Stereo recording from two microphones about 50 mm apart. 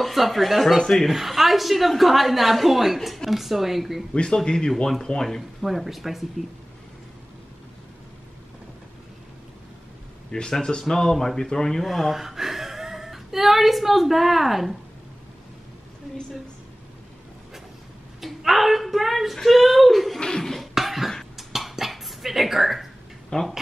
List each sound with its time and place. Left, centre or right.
0.0 s a woman's voice: centre
4.1 s speech: centre
10.3 s speech: centre
11.8 s speech: centre
18.2 s a woman's voice: centre
20.2 s speech: centre
20.5 s a sound: centre
21.4 s dishes: centre
23.3 s speech: centre